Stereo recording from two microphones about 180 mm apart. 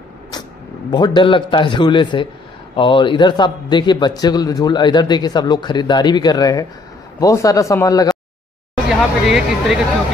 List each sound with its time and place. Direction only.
0.3 s a man's voice: 25° left (ahead or behind)
8.8 s speech: centre (ahead or behind)